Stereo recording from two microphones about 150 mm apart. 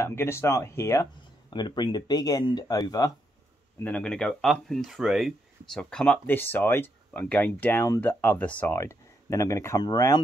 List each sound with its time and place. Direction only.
0.0 s speech: 15° left (ahead or behind)
1.5 s speech: 30° left (ahead or behind)
3.8 s speech: 5° left (ahead or behind); by 10.2 s 25° left (ahead or behind)